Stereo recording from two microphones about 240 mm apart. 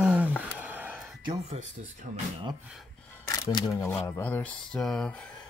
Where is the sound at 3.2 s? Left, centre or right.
Centre.